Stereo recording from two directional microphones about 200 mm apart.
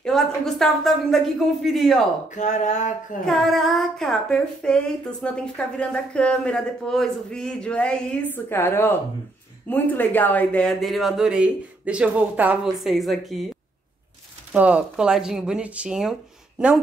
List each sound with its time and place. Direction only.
0.0 s female singing: centre (ahead or behind)
2.3 s speech: 35° left (ahead or behind)
3.3 s female singing: centre (ahead or behind)
14.5 s female singing: 5° right (ahead or behind)